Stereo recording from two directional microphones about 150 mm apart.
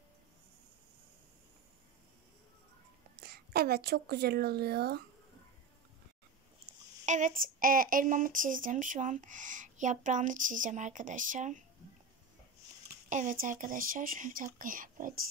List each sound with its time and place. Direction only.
3.2 s speech: 90° right
7.1 s speech: 55° right (ahead or behind)
13.1 s speech: 60° right (ahead or behind)